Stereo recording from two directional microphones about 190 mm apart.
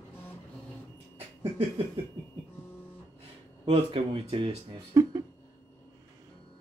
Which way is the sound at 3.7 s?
30° right (ahead or behind).